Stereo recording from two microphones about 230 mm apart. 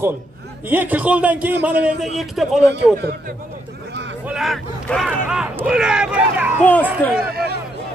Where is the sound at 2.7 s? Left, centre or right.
Right.